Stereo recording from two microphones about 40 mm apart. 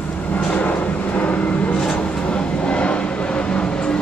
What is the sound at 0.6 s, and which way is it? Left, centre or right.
Vehicle, left.